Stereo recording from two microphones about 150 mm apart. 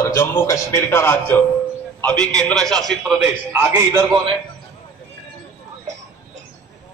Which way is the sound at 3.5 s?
15° right (ahead or behind).